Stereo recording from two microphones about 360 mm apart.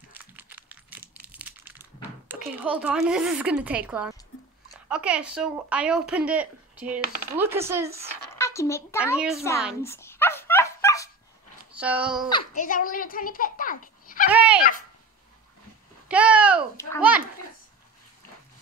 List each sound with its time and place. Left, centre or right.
0.1 s crumpling: centre
4.8 s speech: centre
8.4 s a sound: centre
11.7 s speech: centre
12.3 s a child's voice: centre
14.3 s speech: centre
16.1 s speech: centre